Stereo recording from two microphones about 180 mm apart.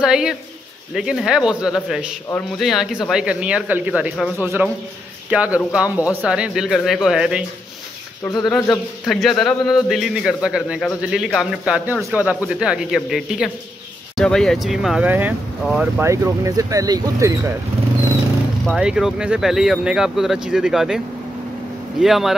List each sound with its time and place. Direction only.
0.0 s a man's voice: 5° right (ahead or behind)
16.0 s speech: 15° right (ahead or behind)
18.8 s a man's voice: 5° right (ahead or behind)
22.0 s a man's voice: centre (ahead or behind)